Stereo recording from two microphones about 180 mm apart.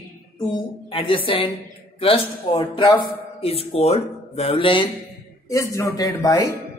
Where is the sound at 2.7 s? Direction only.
25° left (ahead or behind).